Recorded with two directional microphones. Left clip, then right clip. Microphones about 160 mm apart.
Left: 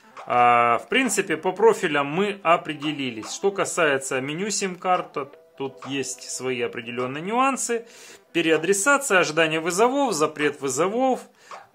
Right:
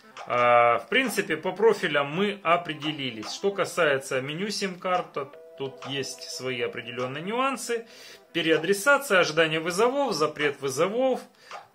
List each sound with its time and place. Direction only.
0.3 s speech: 30° left (ahead or behind)